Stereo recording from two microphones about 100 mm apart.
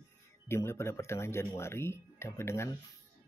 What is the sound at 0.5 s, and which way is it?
Speech, 25° left (ahead or behind).